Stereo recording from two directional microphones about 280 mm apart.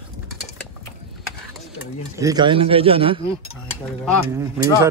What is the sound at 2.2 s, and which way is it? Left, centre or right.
A man's voice, centre.